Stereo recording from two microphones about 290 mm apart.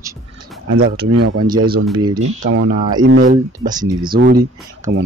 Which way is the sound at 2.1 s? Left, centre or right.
Right.